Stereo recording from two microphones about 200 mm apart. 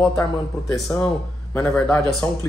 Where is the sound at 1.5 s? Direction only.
10° left (ahead or behind).